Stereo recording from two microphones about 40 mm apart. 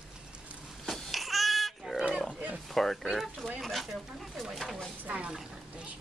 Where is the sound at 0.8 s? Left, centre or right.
Centre.